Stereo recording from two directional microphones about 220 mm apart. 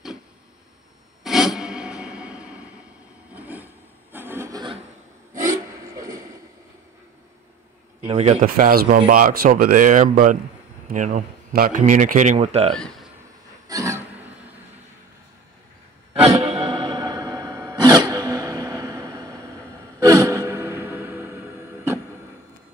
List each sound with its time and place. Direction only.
1.2 s music: centre (ahead or behind)
3.3 s rub: 10° right (ahead or behind)
5.9 s a sound: 15° right (ahead or behind)
8.0 s speech: 25° right (ahead or behind)
12.7 s speech: 5° left (ahead or behind)
13.7 s music: 15° right (ahead or behind)
16.1 s music: 25° right (ahead or behind)
20.0 s gasp: 15° right (ahead or behind)